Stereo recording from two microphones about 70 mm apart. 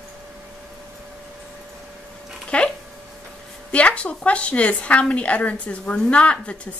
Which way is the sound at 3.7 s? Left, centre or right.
Centre.